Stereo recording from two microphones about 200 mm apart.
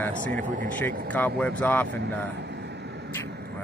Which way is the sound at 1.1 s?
5° left (ahead or behind).